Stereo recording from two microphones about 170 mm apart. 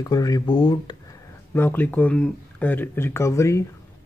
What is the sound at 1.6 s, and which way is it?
Speech, 10° left (ahead or behind).